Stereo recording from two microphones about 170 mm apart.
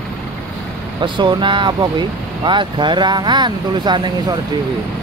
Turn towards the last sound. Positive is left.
turn(degrees=-25)  # may be behind; listen again after turning